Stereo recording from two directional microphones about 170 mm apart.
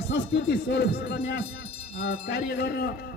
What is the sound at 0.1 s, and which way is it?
A man's voice, 85° left.